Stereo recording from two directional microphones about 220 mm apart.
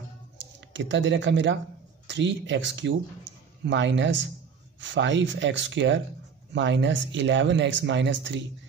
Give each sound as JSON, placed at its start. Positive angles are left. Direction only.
{"t": 0.4, "sound": "speech", "side_deg": -55}